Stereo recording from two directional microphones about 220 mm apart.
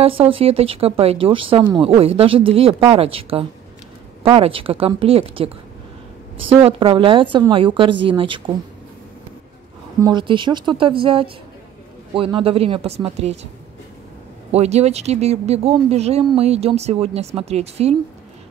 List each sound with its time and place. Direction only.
0.0 s speech: 25° right (ahead or behind)
6.5 s speech: 25° right (ahead or behind)
9.9 s speech: 20° right (ahead or behind)
14.5 s speech: 30° right (ahead or behind)